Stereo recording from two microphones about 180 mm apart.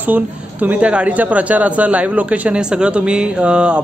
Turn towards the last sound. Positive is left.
turn(degrees=-5)  # may be behind; listen again after turning